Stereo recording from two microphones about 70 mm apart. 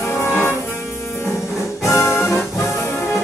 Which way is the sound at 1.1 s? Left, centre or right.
Left.